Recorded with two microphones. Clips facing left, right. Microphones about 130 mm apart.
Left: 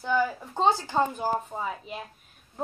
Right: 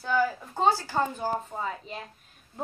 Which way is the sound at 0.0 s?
15° left (ahead or behind).